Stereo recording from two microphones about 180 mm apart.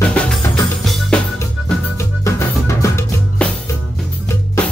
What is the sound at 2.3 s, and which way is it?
Drum, 15° left (ahead or behind).